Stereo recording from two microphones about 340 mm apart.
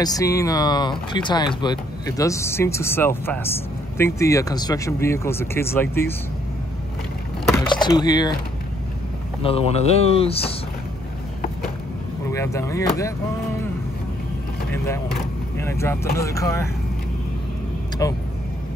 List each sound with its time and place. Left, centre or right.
0.0 s speech: centre
7.4 s speech: centre
9.4 s speech: centre
12.3 s speech: centre
15.5 s speech: centre
18.0 s speech: centre